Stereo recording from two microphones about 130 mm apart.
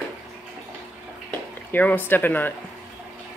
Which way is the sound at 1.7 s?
15° left (ahead or behind).